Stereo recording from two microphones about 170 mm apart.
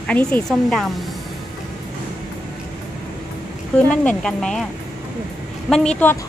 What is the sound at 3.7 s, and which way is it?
Speech, 5° left (ahead or behind).